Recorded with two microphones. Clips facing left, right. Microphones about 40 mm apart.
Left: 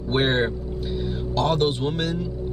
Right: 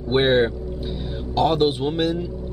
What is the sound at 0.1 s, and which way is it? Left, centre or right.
A man's voice, centre.